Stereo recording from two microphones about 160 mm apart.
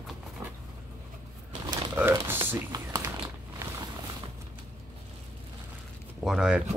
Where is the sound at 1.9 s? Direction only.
15° right (ahead or behind).